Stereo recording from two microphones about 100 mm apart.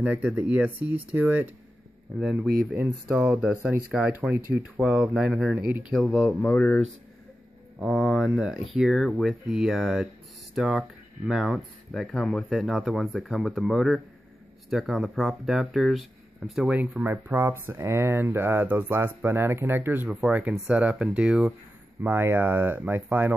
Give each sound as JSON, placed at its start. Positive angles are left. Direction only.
{"t": 0.0, "sound": "speech", "side_deg": -10}
{"t": 2.1, "sound": "speech", "side_deg": 0}
{"t": 2.7, "sound": "speech", "side_deg": -20}
{"t": 8.0, "sound": "speech", "side_deg": 0}
{"t": 22.0, "sound": "speech", "side_deg": -20}